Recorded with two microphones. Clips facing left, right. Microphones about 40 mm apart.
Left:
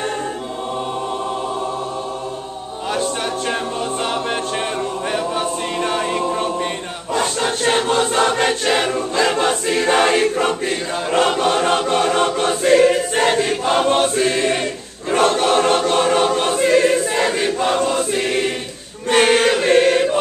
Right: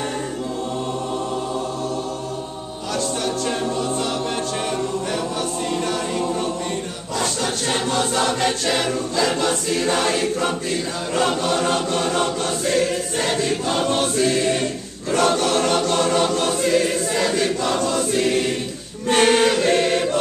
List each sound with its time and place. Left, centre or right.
2.9 s music: left
5.1 s choir: left
19.0 s chant: centre